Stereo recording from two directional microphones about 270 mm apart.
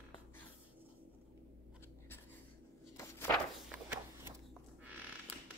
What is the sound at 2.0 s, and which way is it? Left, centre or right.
Writing, centre.